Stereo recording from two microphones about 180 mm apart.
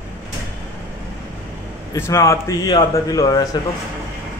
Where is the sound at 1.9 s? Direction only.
15° left (ahead or behind).